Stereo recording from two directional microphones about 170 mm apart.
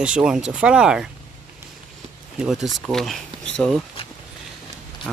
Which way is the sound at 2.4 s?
5° right (ahead or behind).